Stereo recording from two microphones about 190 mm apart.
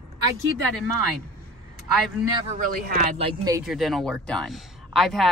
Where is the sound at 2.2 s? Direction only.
20° right (ahead or behind).